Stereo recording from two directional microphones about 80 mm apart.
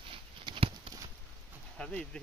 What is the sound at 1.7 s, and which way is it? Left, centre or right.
Speech, centre.